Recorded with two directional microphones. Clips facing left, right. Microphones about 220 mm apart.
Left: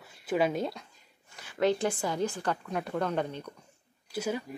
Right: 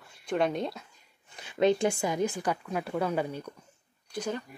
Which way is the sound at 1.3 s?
20° right (ahead or behind).